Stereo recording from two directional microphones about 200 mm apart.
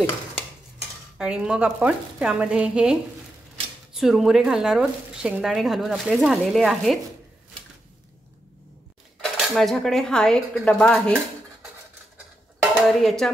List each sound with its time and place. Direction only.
1.1 s speech: 5° right (ahead or behind)
9.2 s speech: centre (ahead or behind)
12.8 s speech: centre (ahead or behind)